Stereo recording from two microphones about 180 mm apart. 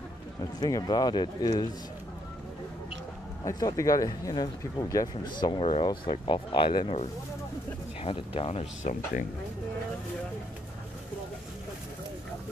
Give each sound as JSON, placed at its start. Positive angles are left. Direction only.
{"t": 0.6, "sound": "speech", "side_deg": 20}
{"t": 3.4, "sound": "speech", "side_deg": 20}